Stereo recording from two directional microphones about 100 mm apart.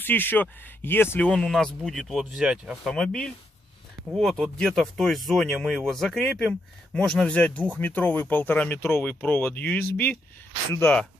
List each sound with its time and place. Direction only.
0.0 s speech: 20° left (ahead or behind)
1.3 s speech: 5° left (ahead or behind)
2.9 s speech: 5° left (ahead or behind); by 11.0 s 20° left (ahead or behind)